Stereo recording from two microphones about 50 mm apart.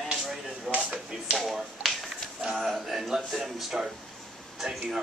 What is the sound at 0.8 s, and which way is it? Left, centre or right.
Speech, centre.